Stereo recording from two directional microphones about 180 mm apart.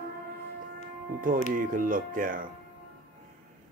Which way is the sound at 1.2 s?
50° right (ahead or behind).